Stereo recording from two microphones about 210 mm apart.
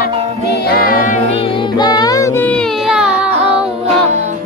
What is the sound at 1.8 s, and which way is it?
Music, 20° left (ahead or behind).